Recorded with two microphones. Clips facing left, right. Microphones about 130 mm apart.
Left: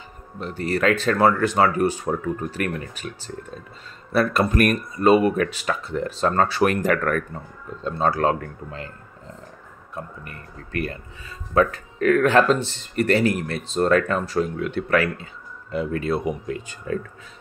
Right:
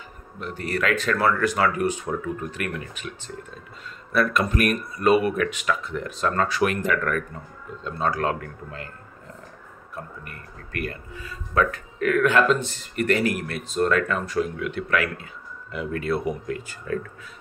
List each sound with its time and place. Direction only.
0.4 s speech: 30° left (ahead or behind)
4.1 s speech: 30° left (ahead or behind)
4.9 s speech: 30° left (ahead or behind)
9.9 s speech: 25° left (ahead or behind)